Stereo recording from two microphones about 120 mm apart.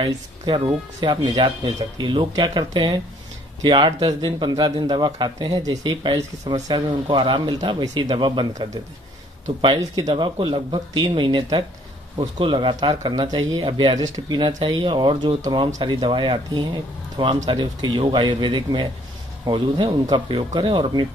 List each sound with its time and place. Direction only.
0.5 s speech: 40° right (ahead or behind)
9.8 s speech: 35° right (ahead or behind)